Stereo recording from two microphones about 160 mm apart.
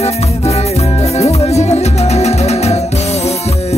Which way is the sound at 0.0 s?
40° left (ahead or behind).